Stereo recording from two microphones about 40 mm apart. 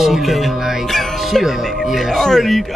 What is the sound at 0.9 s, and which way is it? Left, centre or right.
Music, centre.